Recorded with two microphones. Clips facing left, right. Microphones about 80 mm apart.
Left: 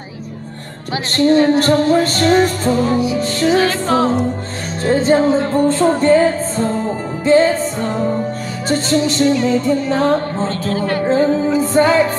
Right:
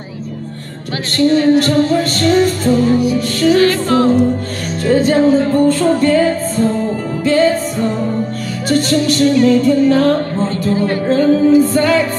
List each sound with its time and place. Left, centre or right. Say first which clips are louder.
1.1 s music: right 1 dB; left
2.7 s music: right 3 dB; centre
8.6 s music: right 2 dB; left